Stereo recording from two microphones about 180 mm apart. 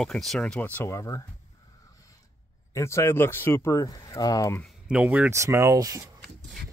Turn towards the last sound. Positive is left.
turn(degrees=-20)  # may be behind; listen again after turning